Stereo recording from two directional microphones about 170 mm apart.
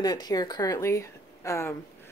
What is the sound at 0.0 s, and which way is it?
Speech, 20° left (ahead or behind).